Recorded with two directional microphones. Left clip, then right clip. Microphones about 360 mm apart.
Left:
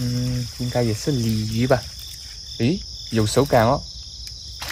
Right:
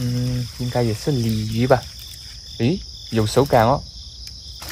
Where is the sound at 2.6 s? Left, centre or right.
Centre.